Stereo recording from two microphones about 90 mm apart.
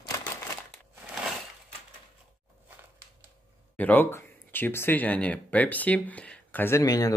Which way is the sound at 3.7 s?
20° left (ahead or behind).